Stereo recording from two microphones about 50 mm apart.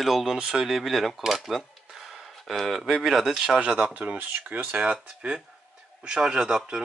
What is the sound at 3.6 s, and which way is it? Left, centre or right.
Speech, right.